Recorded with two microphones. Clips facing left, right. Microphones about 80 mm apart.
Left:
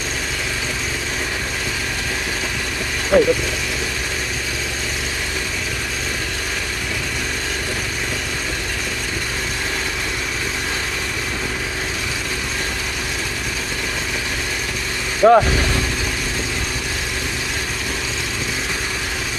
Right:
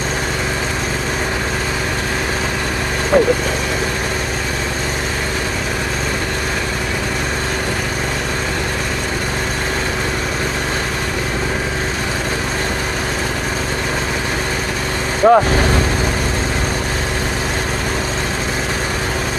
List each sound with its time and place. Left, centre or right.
3.1 s speech: right
15.2 s speech: centre